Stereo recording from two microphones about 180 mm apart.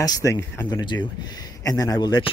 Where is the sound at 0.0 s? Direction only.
20° left (ahead or behind).